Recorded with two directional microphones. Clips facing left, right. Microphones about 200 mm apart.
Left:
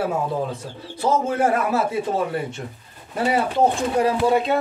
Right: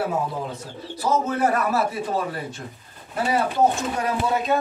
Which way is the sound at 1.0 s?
25° left (ahead or behind).